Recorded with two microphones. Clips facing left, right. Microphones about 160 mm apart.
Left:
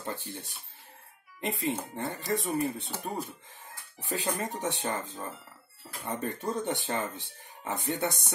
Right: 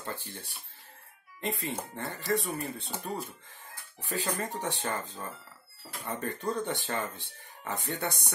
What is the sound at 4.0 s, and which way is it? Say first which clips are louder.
Speech: left 1 dB; 20° left (ahead or behind).